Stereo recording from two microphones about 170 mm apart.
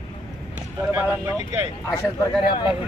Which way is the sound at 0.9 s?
15° right (ahead or behind).